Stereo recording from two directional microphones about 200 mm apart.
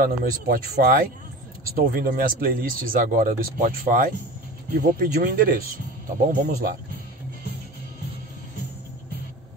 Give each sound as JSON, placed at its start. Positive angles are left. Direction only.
{"t": 0.0, "sound": "speech", "side_deg": -45}